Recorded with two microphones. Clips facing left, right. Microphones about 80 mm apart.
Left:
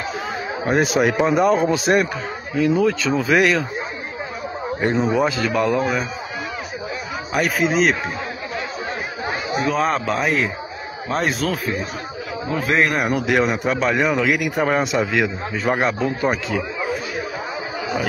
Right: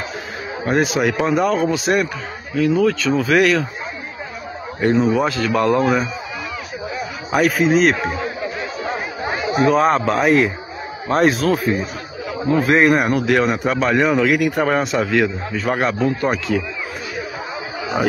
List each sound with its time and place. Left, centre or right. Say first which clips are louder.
0.8 s speech: left 1 dB; left
1.1 s a man's voice: left 1 dB; centre
4.9 s a man's voice: right 2 dB; centre
7.3 s a man's voice: right 4 dB; centre
9.6 s a man's voice: right 6 dB; centre
13.1 s a man's voice: right 2 dB; centre